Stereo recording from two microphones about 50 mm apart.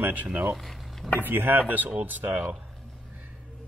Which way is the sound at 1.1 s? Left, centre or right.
Right.